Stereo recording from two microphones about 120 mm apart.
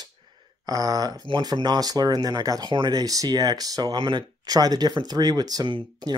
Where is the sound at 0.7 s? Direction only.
30° right (ahead or behind).